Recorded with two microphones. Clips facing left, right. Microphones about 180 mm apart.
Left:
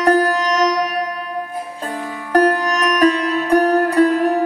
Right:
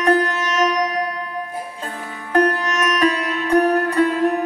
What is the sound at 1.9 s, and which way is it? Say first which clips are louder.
Music: left 5 dB; 35° left (ahead or behind).